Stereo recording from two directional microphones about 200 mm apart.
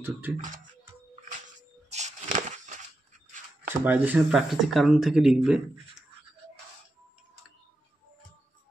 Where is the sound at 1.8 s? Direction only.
35° right (ahead or behind).